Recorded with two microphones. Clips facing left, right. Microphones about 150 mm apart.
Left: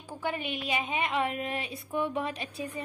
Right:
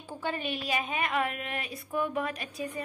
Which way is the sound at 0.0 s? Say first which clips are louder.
Even; 15° left (ahead or behind).